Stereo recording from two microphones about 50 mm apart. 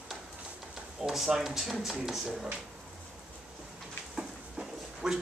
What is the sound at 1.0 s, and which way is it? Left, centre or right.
Speech, centre.